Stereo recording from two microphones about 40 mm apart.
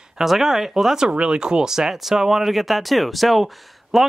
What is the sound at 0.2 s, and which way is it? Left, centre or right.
Speech, centre.